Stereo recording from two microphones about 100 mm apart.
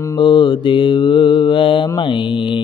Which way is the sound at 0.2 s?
55° left (ahead or behind).